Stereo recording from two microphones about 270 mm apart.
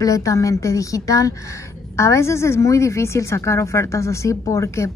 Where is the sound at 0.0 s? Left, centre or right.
Centre.